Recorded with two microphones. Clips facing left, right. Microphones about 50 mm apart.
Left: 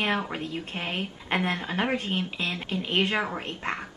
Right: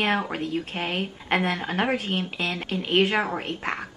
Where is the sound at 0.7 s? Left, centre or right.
Right.